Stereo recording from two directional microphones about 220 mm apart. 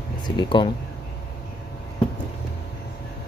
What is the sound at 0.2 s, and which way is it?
Speech, 20° left (ahead or behind).